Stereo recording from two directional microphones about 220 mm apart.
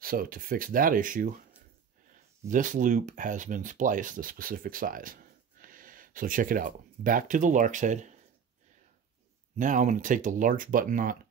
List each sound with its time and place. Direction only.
0.0 s speech: 40° right (ahead or behind)
2.4 s speech: 35° right (ahead or behind)
9.6 s speech: 35° right (ahead or behind)